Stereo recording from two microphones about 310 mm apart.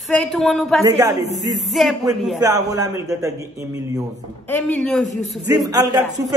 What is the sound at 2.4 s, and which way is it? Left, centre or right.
A man's voice, centre.